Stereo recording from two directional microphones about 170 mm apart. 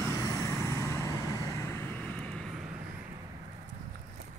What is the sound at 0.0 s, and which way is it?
Vehicle, 15° left (ahead or behind).